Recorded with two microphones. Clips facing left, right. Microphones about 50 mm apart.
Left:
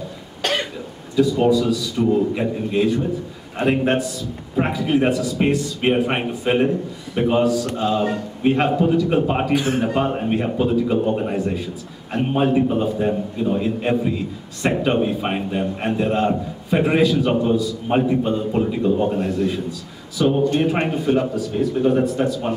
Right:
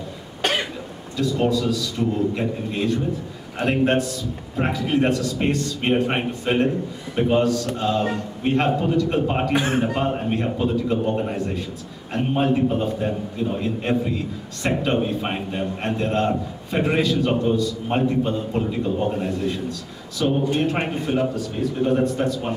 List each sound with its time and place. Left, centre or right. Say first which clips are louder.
0.4 s cough: left 1 dB; centre
1.1 s a man's voice: left 5 dB; centre
9.5 s a man's voice: left 2 dB; right
9.8 s a man's voice: left 2 dB; centre